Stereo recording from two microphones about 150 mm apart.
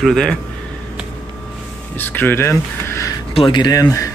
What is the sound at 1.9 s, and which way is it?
Speech, 15° left (ahead or behind).